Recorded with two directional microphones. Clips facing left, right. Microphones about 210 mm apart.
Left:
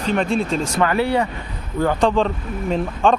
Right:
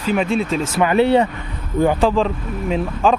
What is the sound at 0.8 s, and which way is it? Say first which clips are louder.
Speech: right 6 dB; 20° right (ahead or behind).